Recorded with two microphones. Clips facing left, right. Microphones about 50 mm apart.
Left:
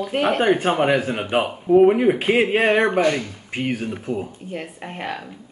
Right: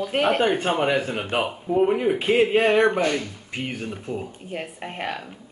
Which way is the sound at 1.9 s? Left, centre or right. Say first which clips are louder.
Left 4 dB; left.